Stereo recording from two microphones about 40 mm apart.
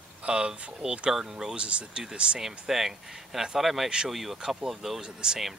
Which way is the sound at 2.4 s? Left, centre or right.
Centre.